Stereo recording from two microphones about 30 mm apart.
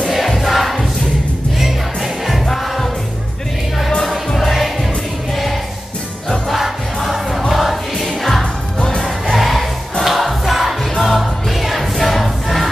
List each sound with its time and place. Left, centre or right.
0.1 s music: centre
2.4 s music: centre
4.0 s music: centre
4.4 s music: centre
7.2 s music: centre
8.7 s crowd: left
9.0 s music: centre